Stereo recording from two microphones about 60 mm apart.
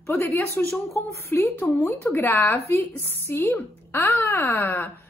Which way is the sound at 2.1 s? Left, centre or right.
Left.